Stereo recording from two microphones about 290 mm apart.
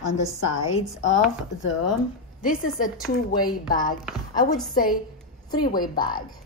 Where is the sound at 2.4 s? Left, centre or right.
Left.